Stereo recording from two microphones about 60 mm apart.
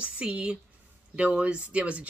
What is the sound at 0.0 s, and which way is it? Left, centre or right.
Speech, right.